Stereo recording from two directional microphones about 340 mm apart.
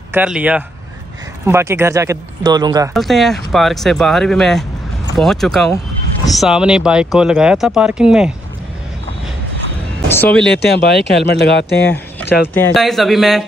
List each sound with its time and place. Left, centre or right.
0.1 s speech: centre
2.9 s speech: centre
10.0 s speech: centre
10.6 s speech: left
12.5 s speech: centre